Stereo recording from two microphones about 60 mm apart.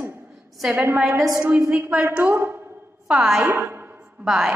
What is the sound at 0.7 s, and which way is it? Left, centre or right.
Speech, right.